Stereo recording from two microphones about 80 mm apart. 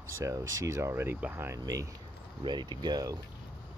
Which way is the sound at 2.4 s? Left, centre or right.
Right.